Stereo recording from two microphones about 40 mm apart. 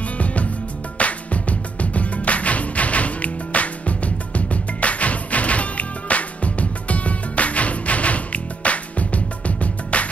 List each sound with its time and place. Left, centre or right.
0.2 s music: left